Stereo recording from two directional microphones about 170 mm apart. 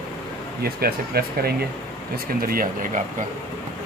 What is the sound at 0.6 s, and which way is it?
Speech, 65° right (ahead or behind).